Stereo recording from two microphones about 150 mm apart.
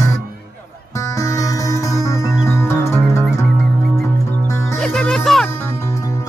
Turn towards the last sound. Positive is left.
turn(degrees=5)  # may be behind; listen again after turning